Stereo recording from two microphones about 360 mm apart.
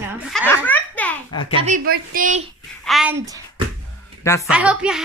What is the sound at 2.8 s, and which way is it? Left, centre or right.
Speech, centre.